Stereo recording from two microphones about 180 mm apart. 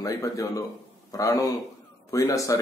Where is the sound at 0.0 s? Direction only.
20° left (ahead or behind).